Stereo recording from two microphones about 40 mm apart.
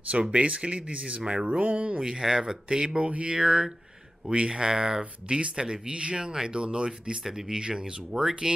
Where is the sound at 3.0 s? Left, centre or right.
Right.